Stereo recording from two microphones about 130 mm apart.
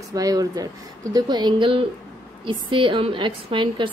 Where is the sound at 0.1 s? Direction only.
30° right (ahead or behind).